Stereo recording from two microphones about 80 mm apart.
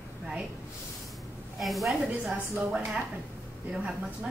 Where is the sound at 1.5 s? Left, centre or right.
Centre.